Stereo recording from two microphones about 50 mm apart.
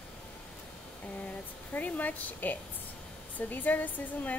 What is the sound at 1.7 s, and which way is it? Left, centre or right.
Speech, left.